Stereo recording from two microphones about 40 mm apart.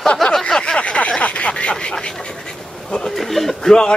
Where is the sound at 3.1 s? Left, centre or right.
Centre.